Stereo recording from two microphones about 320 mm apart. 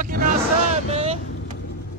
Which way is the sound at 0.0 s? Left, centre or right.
Right.